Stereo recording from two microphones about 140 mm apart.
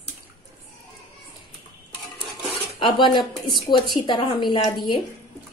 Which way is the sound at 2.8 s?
35° left (ahead or behind).